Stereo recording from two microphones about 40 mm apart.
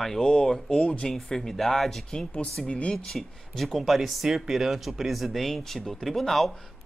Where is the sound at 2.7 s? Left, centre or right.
Left.